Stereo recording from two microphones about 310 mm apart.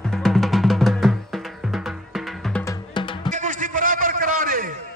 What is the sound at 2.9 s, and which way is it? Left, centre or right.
Music, centre.